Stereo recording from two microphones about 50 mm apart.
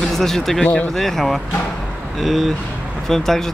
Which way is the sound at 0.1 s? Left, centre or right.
Centre.